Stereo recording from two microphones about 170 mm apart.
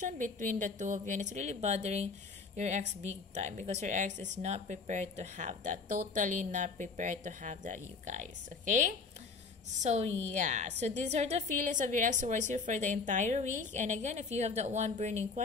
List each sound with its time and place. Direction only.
0.0 s speech: 50° right (ahead or behind)